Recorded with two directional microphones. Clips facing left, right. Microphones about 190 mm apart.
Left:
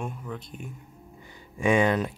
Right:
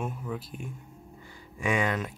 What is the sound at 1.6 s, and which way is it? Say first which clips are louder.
Speech: left 6 dB; 25° left (ahead or behind).